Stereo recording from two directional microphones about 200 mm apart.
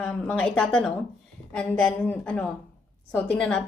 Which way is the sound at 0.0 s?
5° left (ahead or behind).